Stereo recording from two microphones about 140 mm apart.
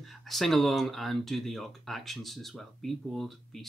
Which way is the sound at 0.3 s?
Centre (ahead or behind).